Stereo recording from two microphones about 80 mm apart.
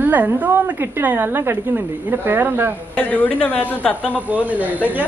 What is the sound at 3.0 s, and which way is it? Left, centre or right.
A woman's voice, centre.